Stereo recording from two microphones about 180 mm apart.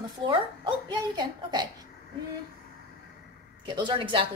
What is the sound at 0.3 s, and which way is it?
A woman's voice, 25° right (ahead or behind).